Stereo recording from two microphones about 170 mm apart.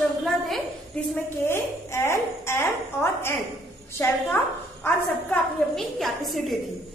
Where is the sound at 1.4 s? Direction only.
15° left (ahead or behind).